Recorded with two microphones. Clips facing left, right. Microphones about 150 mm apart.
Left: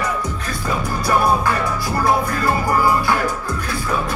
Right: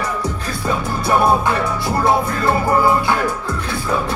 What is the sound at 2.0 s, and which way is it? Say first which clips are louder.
Speech: right 1 dB; 25° right (ahead or behind).